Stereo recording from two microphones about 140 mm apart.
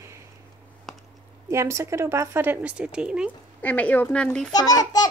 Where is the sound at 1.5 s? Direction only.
20° right (ahead or behind).